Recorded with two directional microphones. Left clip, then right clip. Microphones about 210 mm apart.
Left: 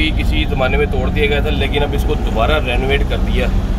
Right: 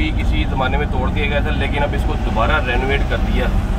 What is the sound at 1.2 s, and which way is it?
Speech, 50° left (ahead or behind).